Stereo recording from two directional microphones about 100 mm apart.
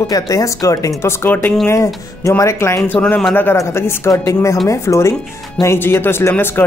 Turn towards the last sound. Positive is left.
turn(degrees=20)  # may be behind; listen again after turning